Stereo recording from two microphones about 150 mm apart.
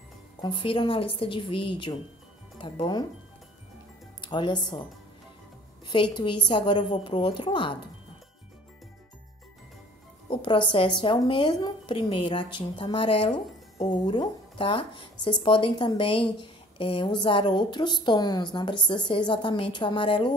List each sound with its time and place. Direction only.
0.4 s speech: 30° left (ahead or behind)
4.2 s speech: 30° left (ahead or behind)
5.9 s speech: 30° left (ahead or behind)
10.3 s speech: 35° left (ahead or behind)